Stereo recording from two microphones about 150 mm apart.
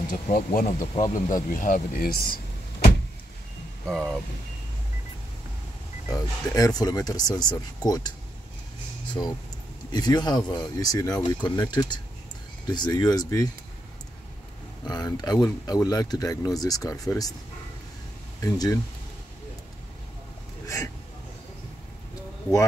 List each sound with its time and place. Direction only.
0.5 s speech: 55° left (ahead or behind); by 2.9 s 85° left
3.8 s speech: 5° left (ahead or behind)
6.0 s speech: 25° left (ahead or behind)
9.1 s speech: 25° left (ahead or behind)
14.9 s speech: 25° left (ahead or behind)
18.4 s speech: 20° left (ahead or behind)
20.6 s hiccup: 20° left (ahead or behind)